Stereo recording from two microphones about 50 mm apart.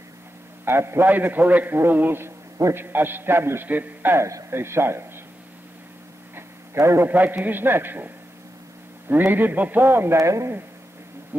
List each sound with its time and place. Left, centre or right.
0.7 s a man's voice: right
1.0 s a man's voice: right
3.6 s a man's voice: right
4.5 s a man's voice: right
6.3 s a sound: right
7.1 s a man's voice: right
9.1 s a man's voice: right
10.1 s speech: right